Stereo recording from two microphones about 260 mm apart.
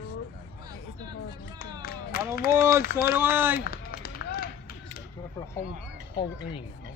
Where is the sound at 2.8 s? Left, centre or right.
Left.